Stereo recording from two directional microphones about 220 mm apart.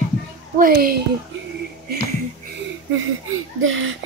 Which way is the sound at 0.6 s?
40° right (ahead or behind).